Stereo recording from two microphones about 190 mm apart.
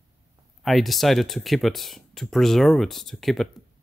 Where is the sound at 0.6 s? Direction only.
Centre (ahead or behind).